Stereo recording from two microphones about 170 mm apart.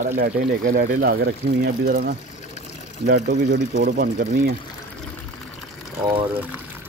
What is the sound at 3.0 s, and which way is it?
Speech, 75° right (ahead or behind).